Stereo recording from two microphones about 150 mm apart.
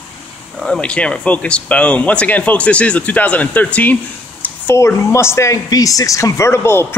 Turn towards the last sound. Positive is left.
turn(degrees=15)  # may be behind; listen again after turning